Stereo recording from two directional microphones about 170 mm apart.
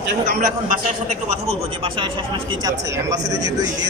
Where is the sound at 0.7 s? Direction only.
40° right (ahead or behind); by 3.9 s 20° right (ahead or behind).